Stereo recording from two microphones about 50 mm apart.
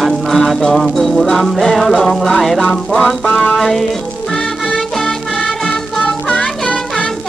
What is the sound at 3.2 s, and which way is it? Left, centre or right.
Music, left.